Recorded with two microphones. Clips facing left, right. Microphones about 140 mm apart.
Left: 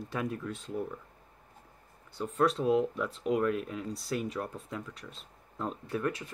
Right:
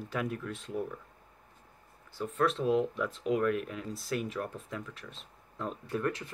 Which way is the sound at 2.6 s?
Centre (ahead or behind).